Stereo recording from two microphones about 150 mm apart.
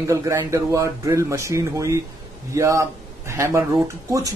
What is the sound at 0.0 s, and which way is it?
A man's voice, 20° right (ahead or behind).